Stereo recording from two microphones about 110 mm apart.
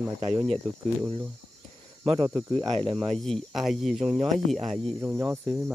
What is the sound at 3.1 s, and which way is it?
Speech, 5° left (ahead or behind).